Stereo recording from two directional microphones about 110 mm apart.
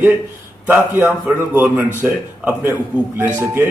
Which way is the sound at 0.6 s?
15° right (ahead or behind).